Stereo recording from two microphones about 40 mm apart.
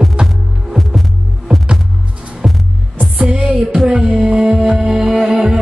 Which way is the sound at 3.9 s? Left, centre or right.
Centre.